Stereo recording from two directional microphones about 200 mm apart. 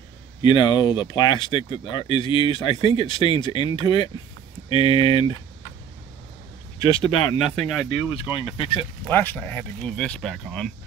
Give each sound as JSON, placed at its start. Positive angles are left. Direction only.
{"t": 0.4, "sound": "speech", "side_deg": 25}
{"t": 6.8, "sound": "speech", "side_deg": 25}
{"t": 7.4, "sound": "speech", "side_deg": 5}
{"t": 8.2, "sound": "speech", "side_deg": 25}
{"t": 9.1, "sound": "speech", "side_deg": 10}